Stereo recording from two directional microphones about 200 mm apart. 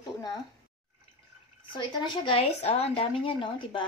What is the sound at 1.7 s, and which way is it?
A woman's voice, 20° left (ahead or behind).